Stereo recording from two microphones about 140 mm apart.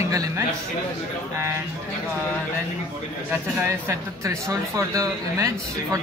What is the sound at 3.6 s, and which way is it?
Speech, 20° right (ahead or behind).